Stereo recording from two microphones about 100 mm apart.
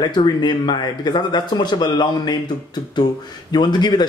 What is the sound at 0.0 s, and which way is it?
Speech, 45° left (ahead or behind).